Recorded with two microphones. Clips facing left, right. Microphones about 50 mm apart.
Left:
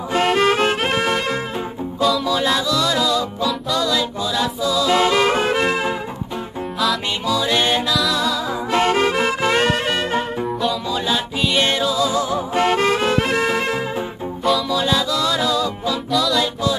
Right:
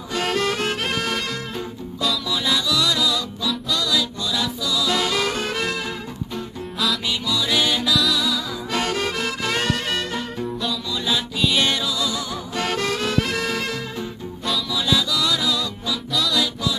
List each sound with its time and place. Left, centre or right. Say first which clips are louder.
0.1 s music: left 6 dB; left
2.0 s music: left 7 dB; centre
2.2 s music: left 4 dB; left
7.4 s music: left 1 dB; left
11.3 s music: left 1 dB; centre
11.6 s music: left 4 dB; left
16.1 s music: left 5 dB; centre